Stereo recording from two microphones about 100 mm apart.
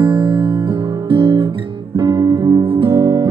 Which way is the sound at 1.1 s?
60° right (ahead or behind).